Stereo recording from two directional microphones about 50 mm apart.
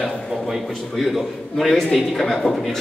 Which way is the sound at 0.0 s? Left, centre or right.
Centre.